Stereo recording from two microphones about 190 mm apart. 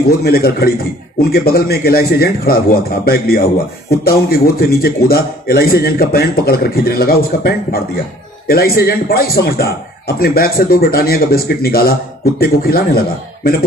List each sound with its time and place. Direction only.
0.2 s a man's voice: 55° left (ahead or behind)